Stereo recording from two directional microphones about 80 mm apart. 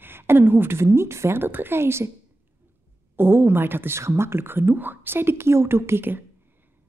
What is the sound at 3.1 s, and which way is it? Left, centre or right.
A woman's voice, right.